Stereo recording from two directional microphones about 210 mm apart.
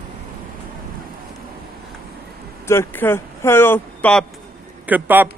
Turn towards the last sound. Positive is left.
turn(degrees=-10)  # may be behind; listen again after turning